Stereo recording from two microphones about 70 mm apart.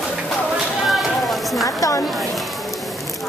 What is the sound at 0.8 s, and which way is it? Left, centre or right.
Run, centre.